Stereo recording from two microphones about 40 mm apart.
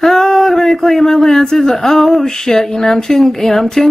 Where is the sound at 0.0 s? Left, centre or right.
Centre.